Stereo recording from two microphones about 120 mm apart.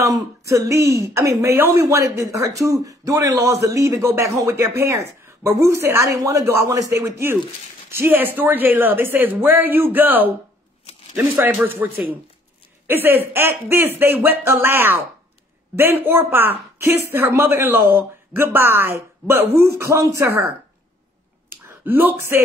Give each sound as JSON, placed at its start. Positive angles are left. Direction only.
{"t": 0.0, "sound": "a woman's voice", "side_deg": -25}
{"t": 21.6, "sound": "speech", "side_deg": -15}